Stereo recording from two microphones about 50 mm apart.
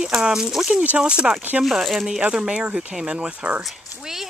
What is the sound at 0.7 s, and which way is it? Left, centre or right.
Speech, right.